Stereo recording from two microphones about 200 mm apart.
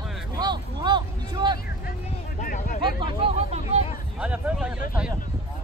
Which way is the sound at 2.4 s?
45° left (ahead or behind).